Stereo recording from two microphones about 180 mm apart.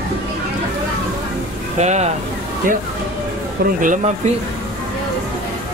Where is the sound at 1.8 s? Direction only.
40° right (ahead or behind).